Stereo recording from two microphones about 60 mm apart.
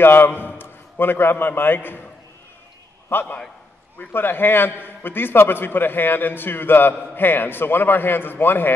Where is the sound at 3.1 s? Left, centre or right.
Left.